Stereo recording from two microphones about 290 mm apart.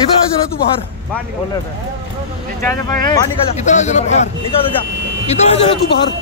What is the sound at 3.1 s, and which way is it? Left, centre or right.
Speech, left.